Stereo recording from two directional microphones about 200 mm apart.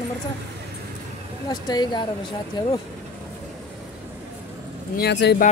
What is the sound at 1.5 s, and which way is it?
Speech, 20° left (ahead or behind).